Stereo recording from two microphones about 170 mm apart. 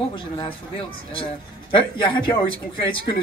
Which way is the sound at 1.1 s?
30° left (ahead or behind).